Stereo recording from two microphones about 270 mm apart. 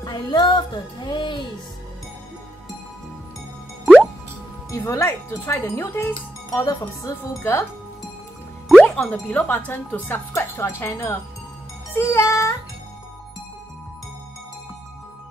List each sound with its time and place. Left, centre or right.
0.0 s speech: centre
3.8 s music: centre
4.6 s speech: centre
8.6 s speech: centre